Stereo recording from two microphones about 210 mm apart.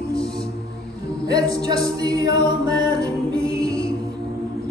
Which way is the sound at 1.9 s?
20° right (ahead or behind).